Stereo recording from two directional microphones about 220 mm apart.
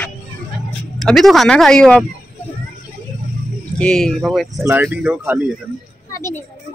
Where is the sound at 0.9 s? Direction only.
Centre (ahead or behind).